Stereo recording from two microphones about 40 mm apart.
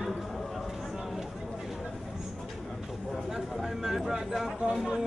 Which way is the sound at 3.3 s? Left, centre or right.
Centre.